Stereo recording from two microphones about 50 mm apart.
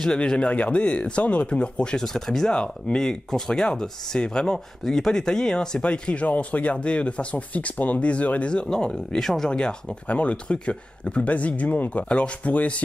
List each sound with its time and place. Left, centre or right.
0.0 s speech: centre
4.8 s speech: centre
10.0 s speech: left